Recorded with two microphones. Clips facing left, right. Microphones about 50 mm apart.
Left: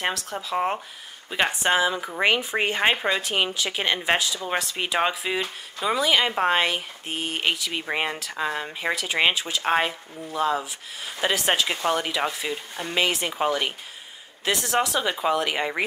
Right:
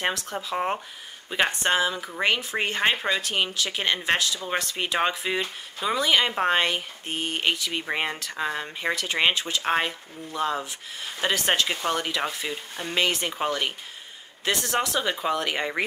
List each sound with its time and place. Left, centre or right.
0.0 s speech: centre